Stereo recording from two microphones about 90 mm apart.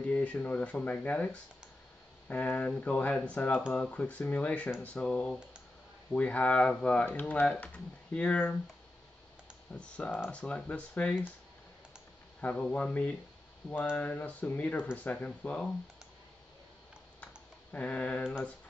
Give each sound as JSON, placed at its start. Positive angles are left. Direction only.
{"t": 0.1, "sound": "speech", "side_deg": 15}
{"t": 9.8, "sound": "speech", "side_deg": 15}
{"t": 12.4, "sound": "speech", "side_deg": 15}
{"t": 17.7, "sound": "speech", "side_deg": 15}